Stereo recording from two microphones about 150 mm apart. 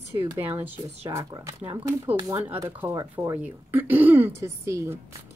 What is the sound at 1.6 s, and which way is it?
Speech, 15° right (ahead or behind).